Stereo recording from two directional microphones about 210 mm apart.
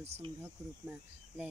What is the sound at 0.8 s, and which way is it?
Speech, 5° right (ahead or behind).